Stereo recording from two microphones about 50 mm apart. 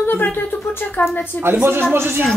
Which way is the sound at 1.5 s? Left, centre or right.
Right.